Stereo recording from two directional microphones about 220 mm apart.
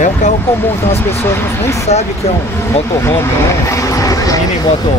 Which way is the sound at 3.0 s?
10° left (ahead or behind).